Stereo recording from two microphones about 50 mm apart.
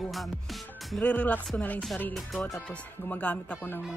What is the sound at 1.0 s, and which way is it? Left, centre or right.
Speech, left.